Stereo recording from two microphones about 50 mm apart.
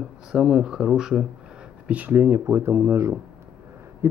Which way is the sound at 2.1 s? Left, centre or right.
Right.